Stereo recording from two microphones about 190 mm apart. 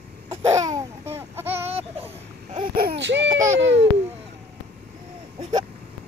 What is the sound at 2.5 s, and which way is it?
Babbling, 50° right (ahead or behind).